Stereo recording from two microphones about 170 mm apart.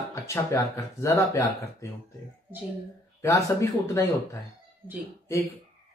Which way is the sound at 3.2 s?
15° left (ahead or behind).